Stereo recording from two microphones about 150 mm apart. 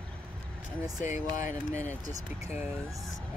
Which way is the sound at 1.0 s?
55° left (ahead or behind).